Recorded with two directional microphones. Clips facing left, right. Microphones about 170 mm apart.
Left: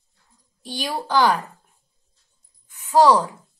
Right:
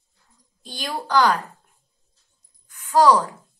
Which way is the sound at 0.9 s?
20° left (ahead or behind).